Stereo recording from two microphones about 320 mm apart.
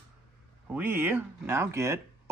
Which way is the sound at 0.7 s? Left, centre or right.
Centre.